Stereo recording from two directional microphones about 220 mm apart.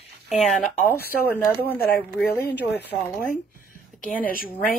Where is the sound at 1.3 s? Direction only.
10° left (ahead or behind).